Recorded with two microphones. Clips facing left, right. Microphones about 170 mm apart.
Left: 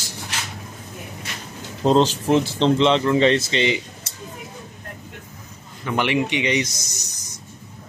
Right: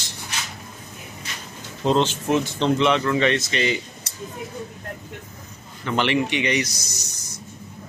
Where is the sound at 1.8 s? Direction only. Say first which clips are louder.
Left 3 dB; 35° left (ahead or behind).